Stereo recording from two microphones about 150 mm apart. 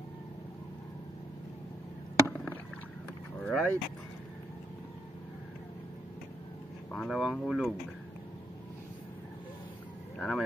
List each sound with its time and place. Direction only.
2.2 s rowboat: 10° left (ahead or behind)
3.3 s vehicle: 10° left (ahead or behind)
6.9 s speech: centre (ahead or behind)
10.1 s speech: 5° left (ahead or behind)